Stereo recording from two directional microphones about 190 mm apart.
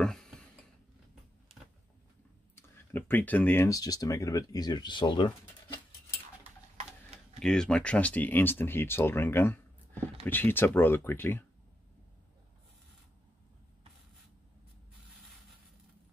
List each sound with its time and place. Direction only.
0.0 s a sound: 5° left (ahead or behind)
2.5 s speech: 10° left (ahead or behind)
7.3 s speech: 5° left (ahead or behind)